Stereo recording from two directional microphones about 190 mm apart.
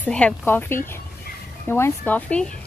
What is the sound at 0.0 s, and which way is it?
Speech, 5° left (ahead or behind).